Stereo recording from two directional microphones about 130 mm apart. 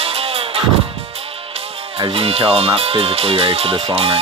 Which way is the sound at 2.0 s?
45° right (ahead or behind).